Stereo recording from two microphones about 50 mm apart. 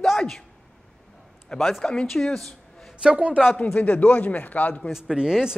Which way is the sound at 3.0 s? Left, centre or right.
Centre.